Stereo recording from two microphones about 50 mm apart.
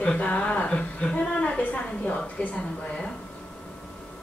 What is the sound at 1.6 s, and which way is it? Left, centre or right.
A woman's voice, left.